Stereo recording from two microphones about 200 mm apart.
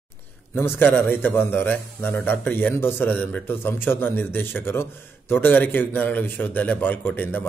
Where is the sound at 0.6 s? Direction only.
10° left (ahead or behind).